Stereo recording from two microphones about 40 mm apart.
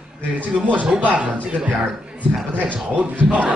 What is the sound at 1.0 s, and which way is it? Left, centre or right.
Speech, right.